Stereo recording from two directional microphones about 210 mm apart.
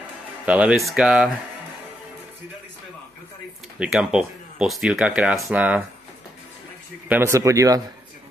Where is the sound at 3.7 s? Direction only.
Centre (ahead or behind).